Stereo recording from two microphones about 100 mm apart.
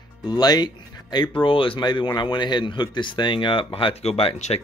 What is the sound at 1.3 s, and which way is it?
Speech, 60° left (ahead or behind).